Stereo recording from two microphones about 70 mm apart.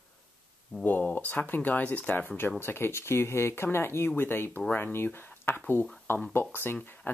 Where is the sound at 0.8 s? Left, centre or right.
Left.